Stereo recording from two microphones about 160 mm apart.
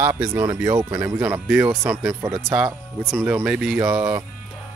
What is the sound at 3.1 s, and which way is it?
Speech, 10° right (ahead or behind).